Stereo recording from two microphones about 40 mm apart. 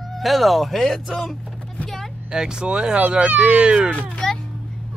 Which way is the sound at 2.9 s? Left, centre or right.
Right.